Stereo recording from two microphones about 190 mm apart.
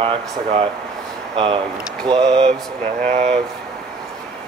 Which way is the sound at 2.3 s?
35° right (ahead or behind).